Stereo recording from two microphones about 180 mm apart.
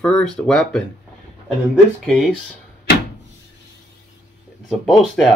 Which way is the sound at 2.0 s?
5° left (ahead or behind).